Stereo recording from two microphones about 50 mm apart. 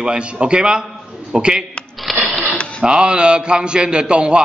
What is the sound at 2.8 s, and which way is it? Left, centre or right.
A man's voice, centre.